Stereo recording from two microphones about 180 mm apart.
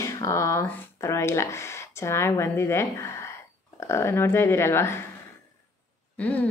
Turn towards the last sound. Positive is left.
turn(degrees=10)  # may be behind; listen again after turning